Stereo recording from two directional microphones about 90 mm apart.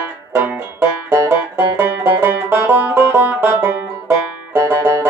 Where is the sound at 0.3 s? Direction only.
30° right (ahead or behind).